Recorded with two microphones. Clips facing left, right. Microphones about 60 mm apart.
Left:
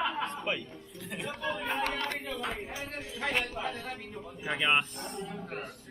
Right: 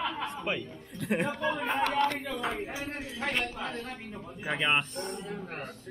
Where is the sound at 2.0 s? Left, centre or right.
Centre.